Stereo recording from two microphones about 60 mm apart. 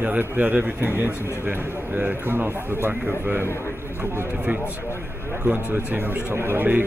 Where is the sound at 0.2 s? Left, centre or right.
Right.